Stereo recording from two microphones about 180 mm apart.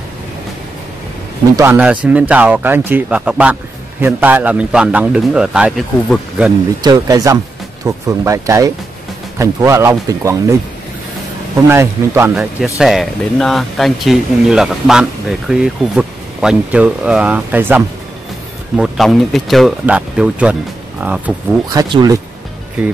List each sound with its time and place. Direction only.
1.6 s a man's voice: 10° right (ahead or behind)
6.8 s a man's voice: 20° right (ahead or behind)
11.7 s a man's voice: 15° right (ahead or behind)
12.4 s speech: 5° right (ahead or behind)
18.8 s a man's voice: centre (ahead or behind)
21.6 s speech: 25° right (ahead or behind)